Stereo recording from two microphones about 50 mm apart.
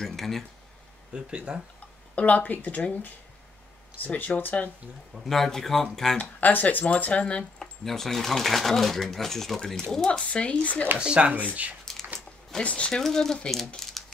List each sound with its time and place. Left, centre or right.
0.0 s speech: centre
1.1 s speech: centre
2.1 s speech: left
5.1 s speech: centre
6.1 s speech: left
7.8 s speech: centre
10.3 s speech: left
11.0 s speech: right
11.8 s a sound: centre
12.6 s speech: left
12.9 s speech: centre